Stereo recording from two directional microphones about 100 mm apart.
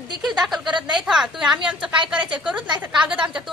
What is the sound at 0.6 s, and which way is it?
Speech, 50° right (ahead or behind).